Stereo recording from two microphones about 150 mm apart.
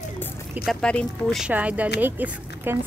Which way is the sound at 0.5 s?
Centre (ahead or behind).